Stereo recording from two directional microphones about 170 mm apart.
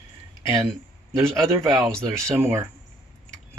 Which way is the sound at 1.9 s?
15° right (ahead or behind).